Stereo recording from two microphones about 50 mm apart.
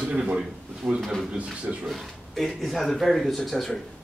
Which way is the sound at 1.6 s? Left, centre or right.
Right.